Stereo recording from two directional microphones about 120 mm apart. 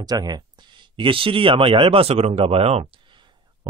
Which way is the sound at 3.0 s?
40° right (ahead or behind).